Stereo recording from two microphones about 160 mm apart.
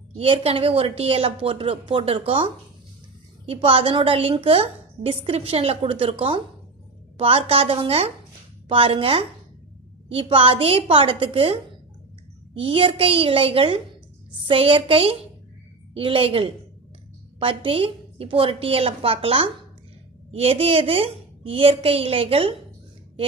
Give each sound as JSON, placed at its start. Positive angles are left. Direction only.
{"t": 0.2, "sound": "a woman's voice", "side_deg": -35}